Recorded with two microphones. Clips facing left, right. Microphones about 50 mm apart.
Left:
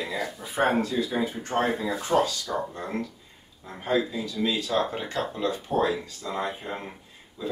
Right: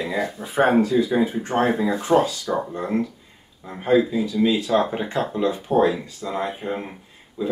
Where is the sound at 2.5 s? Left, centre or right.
Right.